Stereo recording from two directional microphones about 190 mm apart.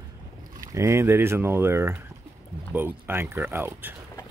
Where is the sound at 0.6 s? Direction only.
15° right (ahead or behind).